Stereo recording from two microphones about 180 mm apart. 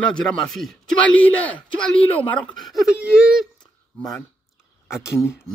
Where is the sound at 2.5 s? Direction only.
Centre (ahead or behind).